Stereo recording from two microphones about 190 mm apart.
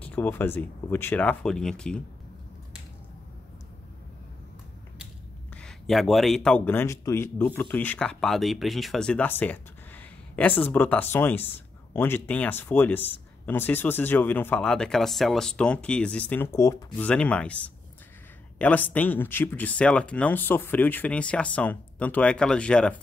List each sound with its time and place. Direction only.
0.0 s speech: 10° left (ahead or behind)
5.5 s speech: 5° left (ahead or behind)
18.6 s speech: 10° left (ahead or behind)